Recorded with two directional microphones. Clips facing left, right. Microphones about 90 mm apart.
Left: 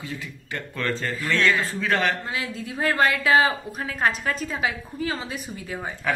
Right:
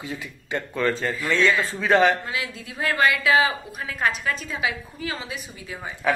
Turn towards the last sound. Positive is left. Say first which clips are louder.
# left 3 dB
turn(degrees=40)  # may be behind; listen again after turning